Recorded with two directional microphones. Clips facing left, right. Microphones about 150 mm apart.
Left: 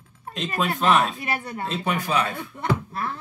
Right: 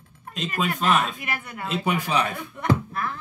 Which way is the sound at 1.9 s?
15° right (ahead or behind).